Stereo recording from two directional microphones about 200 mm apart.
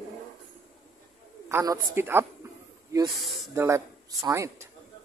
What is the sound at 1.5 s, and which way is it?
Speech, 15° right (ahead or behind).